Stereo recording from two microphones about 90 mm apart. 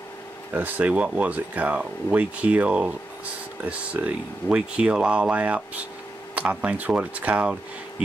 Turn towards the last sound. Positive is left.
turn(degrees=-15)  # may be behind; listen again after turning